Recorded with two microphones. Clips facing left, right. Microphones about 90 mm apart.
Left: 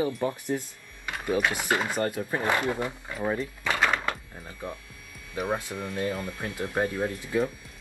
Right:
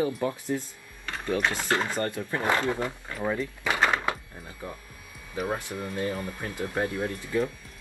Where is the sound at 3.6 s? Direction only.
10° right (ahead or behind).